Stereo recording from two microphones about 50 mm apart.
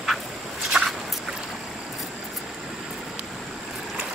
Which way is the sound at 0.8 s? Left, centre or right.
Right.